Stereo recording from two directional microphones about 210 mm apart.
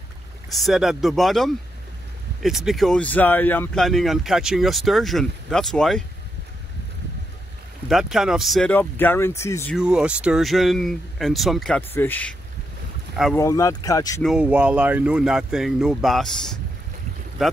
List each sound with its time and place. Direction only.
0.5 s speech: centre (ahead or behind)
7.9 s speech: centre (ahead or behind)
9.8 s speech: 5° right (ahead or behind); by 14.2 s 15° left (ahead or behind)
14.2 s speech: 5° right (ahead or behind)